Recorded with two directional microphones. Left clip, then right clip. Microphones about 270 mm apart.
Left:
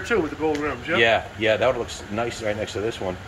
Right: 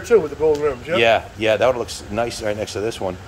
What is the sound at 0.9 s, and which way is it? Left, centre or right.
A man's voice, centre.